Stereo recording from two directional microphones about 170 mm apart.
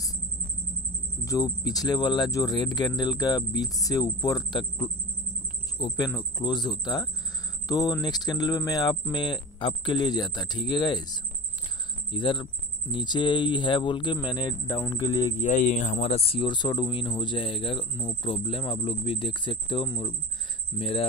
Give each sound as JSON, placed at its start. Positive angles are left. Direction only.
{"t": 1.2, "sound": "speech", "side_deg": 20}
{"t": 15.3, "sound": "speech", "side_deg": 45}